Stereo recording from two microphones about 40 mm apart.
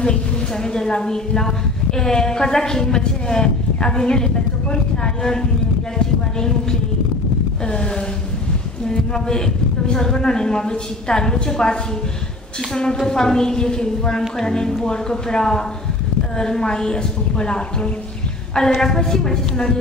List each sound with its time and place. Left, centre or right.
0.7 s a woman's voice: centre
7.6 s a woman's voice: left
13.0 s a woman's voice: centre
18.7 s a woman's voice: centre